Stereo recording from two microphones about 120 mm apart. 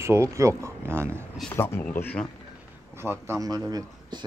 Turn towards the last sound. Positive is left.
turn(degrees=-20)  # may be behind; listen again after turning